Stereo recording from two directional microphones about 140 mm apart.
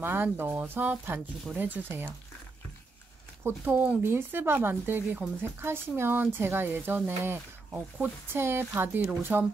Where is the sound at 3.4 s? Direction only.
15° right (ahead or behind).